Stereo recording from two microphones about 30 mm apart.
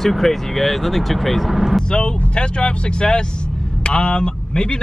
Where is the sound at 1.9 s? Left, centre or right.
Left.